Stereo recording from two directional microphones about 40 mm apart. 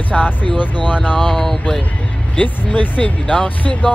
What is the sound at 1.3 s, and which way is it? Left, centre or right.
Speech, centre.